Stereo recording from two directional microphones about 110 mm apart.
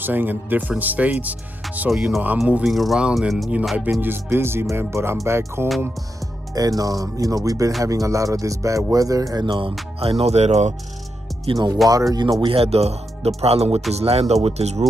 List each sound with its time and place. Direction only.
0.0 s speech: 15° right (ahead or behind); by 3.5 s centre (ahead or behind)
4.0 s speech: 20° right (ahead or behind)
9.5 s speech: 50° right (ahead or behind)
9.9 s speech: 65° right (ahead or behind); by 10.7 s 90° right
11.5 s speech: 35° right (ahead or behind)
12.4 s speech: 55° right (ahead or behind); by 14.9 s 80° right